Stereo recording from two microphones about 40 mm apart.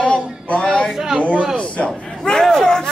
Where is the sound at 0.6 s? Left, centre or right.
Centre.